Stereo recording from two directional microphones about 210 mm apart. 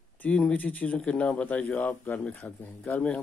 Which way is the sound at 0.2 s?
5° left (ahead or behind).